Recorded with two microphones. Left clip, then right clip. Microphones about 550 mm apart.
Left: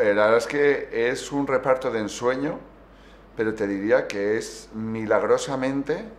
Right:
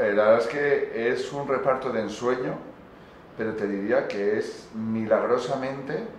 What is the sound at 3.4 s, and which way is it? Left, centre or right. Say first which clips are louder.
Speech: left 3 dB; left.